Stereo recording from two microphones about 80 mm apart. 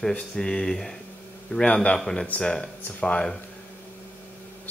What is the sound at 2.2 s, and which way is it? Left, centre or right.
Speech, centre.